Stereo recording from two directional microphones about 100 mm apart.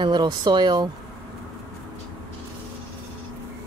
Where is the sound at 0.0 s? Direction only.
45° right (ahead or behind).